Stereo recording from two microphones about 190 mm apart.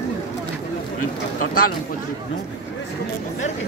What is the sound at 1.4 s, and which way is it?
Speech, 50° left (ahead or behind).